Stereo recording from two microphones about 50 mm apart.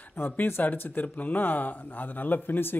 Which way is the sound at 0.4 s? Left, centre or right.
Left.